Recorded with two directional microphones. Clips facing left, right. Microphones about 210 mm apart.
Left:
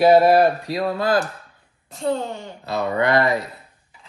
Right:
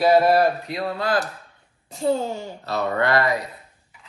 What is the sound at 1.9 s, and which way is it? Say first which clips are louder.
Speech: right 1 dB; centre (ahead or behind).